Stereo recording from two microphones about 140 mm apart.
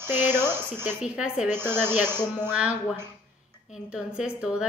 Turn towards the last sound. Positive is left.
turn(degrees=-5)  # may be behind; listen again after turning